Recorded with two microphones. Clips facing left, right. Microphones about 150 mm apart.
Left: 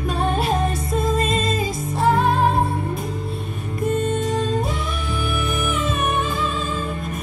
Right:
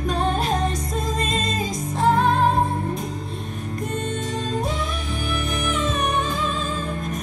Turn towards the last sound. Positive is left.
turn(degrees=5)  # may be behind; listen again after turning